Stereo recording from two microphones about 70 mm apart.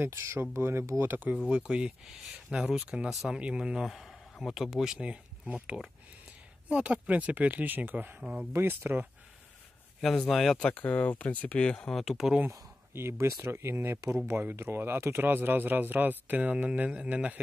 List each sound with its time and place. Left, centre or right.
0.0 s speech: right
1.1 s a man's voice: right
1.4 s speech: centre
3.3 s a man's voice: centre
8.2 s speech: centre
8.5 s speech: right
9.9 s speech: centre
10.6 s speech: centre
11.9 s speech: centre
12.4 s a man's voice: right; by 17.4 s centre